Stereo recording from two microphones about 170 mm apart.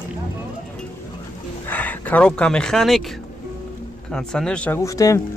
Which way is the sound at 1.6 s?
10° left (ahead or behind).